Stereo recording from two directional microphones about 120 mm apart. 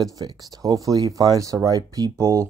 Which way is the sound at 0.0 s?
30° right (ahead or behind).